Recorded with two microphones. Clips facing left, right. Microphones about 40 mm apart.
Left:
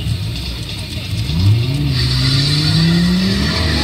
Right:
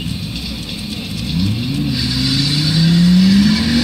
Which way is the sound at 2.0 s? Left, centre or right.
Left.